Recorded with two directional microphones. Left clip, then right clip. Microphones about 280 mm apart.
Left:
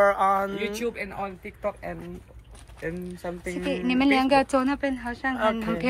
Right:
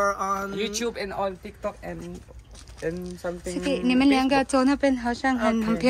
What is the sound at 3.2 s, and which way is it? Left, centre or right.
A woman's voice, centre.